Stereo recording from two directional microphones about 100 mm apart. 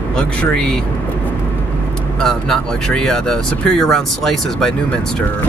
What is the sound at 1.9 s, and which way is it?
Speech, 5° left (ahead or behind).